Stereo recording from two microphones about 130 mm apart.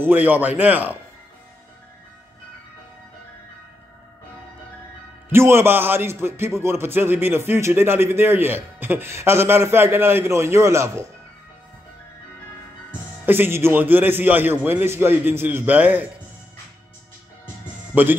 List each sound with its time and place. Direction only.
0.0 s a man's voice: 15° right (ahead or behind)
5.3 s a man's voice: 20° right (ahead or behind)
13.2 s a man's voice: 15° right (ahead or behind)
17.9 s a man's voice: 10° right (ahead or behind)